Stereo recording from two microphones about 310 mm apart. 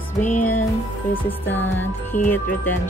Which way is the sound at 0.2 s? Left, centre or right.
Left.